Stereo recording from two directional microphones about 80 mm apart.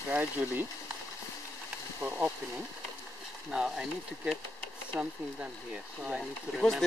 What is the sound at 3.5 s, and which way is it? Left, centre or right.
Speech, centre.